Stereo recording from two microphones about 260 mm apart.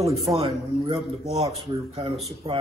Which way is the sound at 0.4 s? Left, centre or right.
Right.